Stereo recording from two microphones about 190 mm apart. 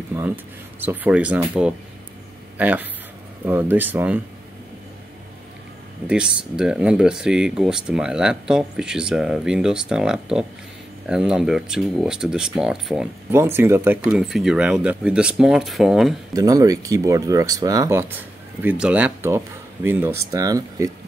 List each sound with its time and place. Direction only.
0.1 s speech: 10° right (ahead or behind)
6.0 s speech: 5° right (ahead or behind)
14.2 s speech: centre (ahead or behind)
16.3 s speech: 20° right (ahead or behind)